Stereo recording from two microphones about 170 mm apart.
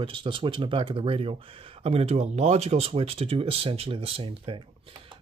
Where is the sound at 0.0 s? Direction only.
30° right (ahead or behind).